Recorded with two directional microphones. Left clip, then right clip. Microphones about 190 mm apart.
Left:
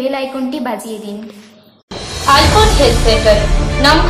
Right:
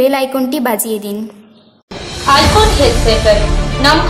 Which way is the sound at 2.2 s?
Centre (ahead or behind).